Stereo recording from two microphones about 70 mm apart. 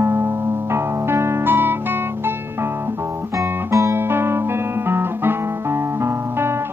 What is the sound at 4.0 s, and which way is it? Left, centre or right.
Guitar, right.